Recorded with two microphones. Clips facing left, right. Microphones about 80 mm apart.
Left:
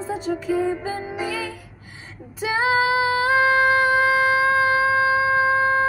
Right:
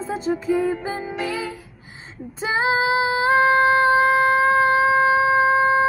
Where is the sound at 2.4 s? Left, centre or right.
Right.